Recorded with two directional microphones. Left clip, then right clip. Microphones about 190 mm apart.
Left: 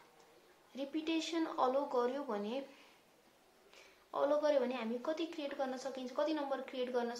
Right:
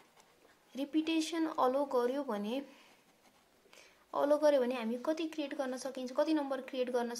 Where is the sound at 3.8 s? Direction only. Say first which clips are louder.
Right 2 dB; 50° right (ahead or behind).